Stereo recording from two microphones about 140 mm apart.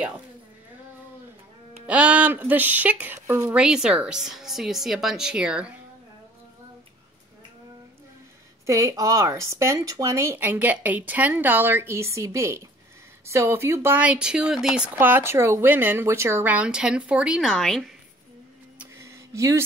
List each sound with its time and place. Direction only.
1.9 s speech: 10° right (ahead or behind)
3.5 s a woman's voice: 5° right (ahead or behind)
8.6 s speech: 20° right (ahead or behind); by 17.9 s 5° left (ahead or behind)
18.9 s a sound: 20° right (ahead or behind)